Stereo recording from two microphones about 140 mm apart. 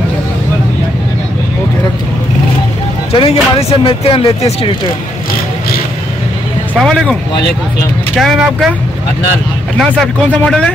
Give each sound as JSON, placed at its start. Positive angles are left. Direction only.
{"t": 3.1, "sound": "speech", "side_deg": 45}
{"t": 6.8, "sound": "speech", "side_deg": 5}
{"t": 8.2, "sound": "speech", "side_deg": 0}
{"t": 9.8, "sound": "speech", "side_deg": 5}